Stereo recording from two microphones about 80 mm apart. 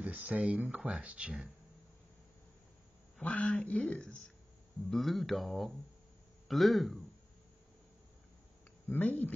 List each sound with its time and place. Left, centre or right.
0.0 s speech: centre
3.2 s speech: centre
4.8 s speech: centre
8.8 s speech: left